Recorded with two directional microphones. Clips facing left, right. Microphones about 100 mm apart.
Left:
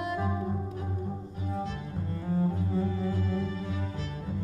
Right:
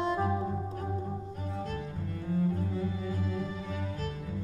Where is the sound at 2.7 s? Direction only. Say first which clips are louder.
Left 4 dB; 35° left (ahead or behind).